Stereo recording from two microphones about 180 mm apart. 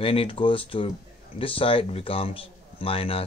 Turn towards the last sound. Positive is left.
turn(degrees=30)  # may be behind; listen again after turning